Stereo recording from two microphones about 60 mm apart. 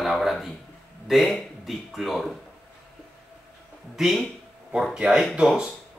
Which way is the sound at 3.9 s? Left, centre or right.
Centre.